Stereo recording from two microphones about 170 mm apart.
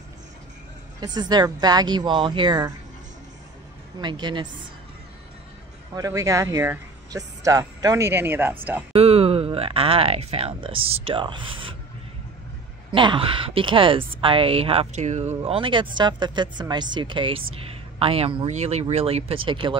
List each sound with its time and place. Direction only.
1.0 s speech: 25° right (ahead or behind)
4.0 s speech: 25° right (ahead or behind)
5.9 s speech: 20° right (ahead or behind)
8.9 s speech: 35° right (ahead or behind)
12.9 s speech: 30° right (ahead or behind)